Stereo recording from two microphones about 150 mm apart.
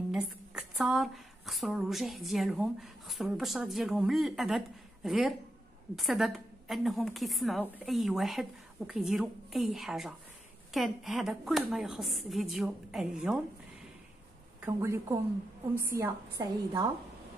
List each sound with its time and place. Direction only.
0.1 s a woman's voice: 5° right (ahead or behind)
14.6 s a woman's voice: 15° right (ahead or behind)